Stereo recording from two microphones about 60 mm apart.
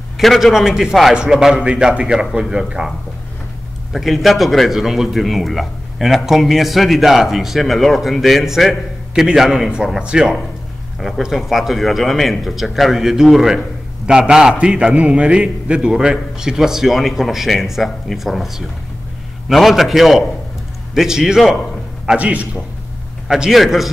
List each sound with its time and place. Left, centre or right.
0.2 s a man's voice: centre
3.9 s a man's voice: centre
11.0 s a man's voice: centre
19.5 s a man's voice: centre
22.0 s a man's voice: right
23.2 s a man's voice: centre